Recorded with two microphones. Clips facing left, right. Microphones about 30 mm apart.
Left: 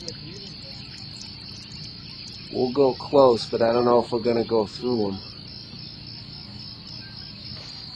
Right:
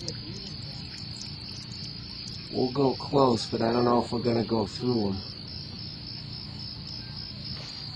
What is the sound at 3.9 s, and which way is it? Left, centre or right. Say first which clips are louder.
Speech: left 6 dB; left.